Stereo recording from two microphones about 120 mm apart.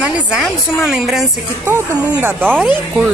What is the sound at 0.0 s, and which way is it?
A woman's voice, 5° right (ahead or behind).